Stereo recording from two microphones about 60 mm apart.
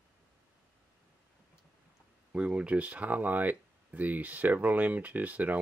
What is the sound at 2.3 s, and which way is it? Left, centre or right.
Speech, centre.